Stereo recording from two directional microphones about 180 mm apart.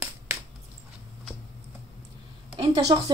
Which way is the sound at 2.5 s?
25° right (ahead or behind).